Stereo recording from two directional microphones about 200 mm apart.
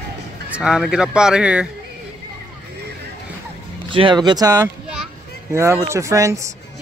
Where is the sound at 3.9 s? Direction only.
25° right (ahead or behind).